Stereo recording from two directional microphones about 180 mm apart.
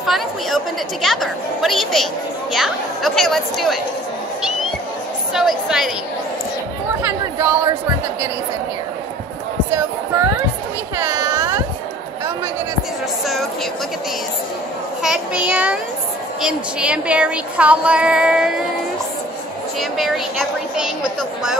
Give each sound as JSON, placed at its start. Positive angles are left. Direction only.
{"t": 0.0, "sound": "chatter", "side_deg": 0}
{"t": 1.0, "sound": "speech", "side_deg": 0}
{"t": 5.3, "sound": "speech", "side_deg": 0}
{"t": 7.0, "sound": "speech", "side_deg": -15}
{"t": 11.0, "sound": "a sound", "side_deg": -15}
{"t": 15.0, "sound": "a woman's voice", "side_deg": -5}
{"t": 19.8, "sound": "speech", "side_deg": 0}